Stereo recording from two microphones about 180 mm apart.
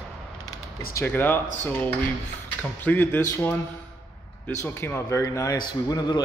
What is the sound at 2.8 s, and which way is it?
A man's voice, 10° left (ahead or behind).